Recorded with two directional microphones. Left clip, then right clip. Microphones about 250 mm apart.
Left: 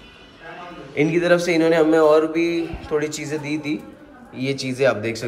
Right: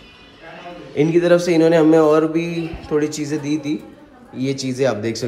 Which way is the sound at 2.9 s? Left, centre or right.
Right.